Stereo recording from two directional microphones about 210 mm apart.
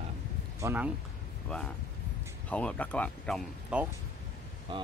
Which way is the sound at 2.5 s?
5° left (ahead or behind).